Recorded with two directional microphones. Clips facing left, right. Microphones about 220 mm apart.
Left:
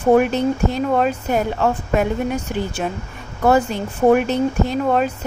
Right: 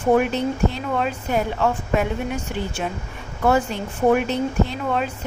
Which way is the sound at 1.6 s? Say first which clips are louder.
Left 3 dB; 40° left (ahead or behind).